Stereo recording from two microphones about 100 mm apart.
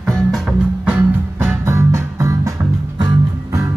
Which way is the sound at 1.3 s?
25° right (ahead or behind).